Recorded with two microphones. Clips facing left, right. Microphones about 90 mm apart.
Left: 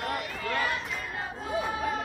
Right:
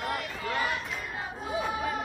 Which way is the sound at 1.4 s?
5° right (ahead or behind).